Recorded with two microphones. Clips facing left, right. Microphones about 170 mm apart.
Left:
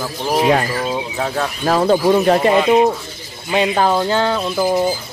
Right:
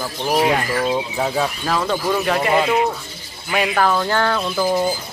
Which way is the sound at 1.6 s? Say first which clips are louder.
Left 12 dB; 40° left (ahead or behind).